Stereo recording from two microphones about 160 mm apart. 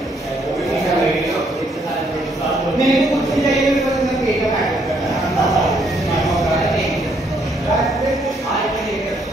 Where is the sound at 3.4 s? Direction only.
Centre (ahead or behind).